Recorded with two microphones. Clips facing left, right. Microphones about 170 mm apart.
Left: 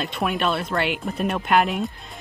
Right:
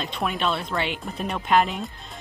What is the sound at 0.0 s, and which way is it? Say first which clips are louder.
Speech: left 2 dB; centre (ahead or behind).